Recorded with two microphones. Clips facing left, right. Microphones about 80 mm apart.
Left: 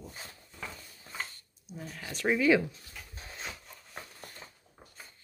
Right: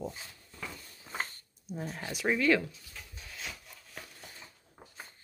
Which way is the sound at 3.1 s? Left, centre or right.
Left.